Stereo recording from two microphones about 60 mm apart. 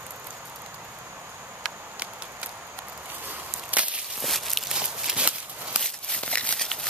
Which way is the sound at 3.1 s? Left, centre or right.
Right.